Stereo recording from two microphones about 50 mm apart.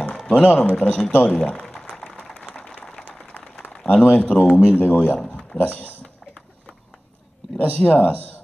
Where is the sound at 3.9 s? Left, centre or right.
Left.